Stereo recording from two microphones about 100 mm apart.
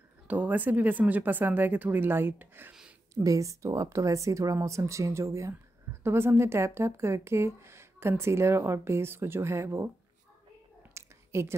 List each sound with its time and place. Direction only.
0.3 s speech: 15° right (ahead or behind)
3.2 s speech: 35° right (ahead or behind)
10.8 s a sound: 25° right (ahead or behind)